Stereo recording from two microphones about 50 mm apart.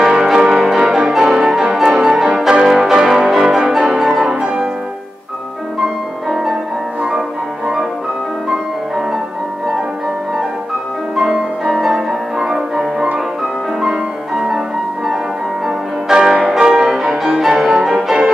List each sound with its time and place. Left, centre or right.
0.0 s music: centre
4.4 s music: right
6.2 s music: centre
11.1 s music: centre
15.6 s change ringing: centre
16.5 s music: centre